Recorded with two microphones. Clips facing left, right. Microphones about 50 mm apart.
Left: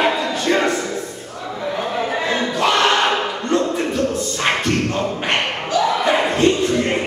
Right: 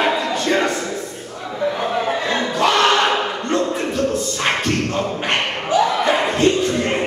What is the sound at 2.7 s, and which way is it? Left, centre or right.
Battle cry, left.